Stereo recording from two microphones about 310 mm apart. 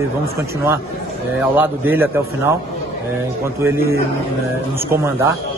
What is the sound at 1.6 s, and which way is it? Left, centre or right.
Speech, centre.